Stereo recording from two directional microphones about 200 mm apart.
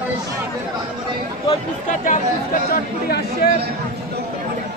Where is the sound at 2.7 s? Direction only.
50° left (ahead or behind).